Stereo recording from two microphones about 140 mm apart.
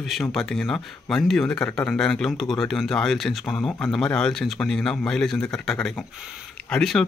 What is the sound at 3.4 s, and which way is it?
Speech, 20° left (ahead or behind).